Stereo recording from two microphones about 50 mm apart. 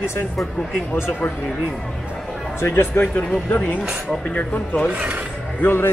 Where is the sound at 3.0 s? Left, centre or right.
Left.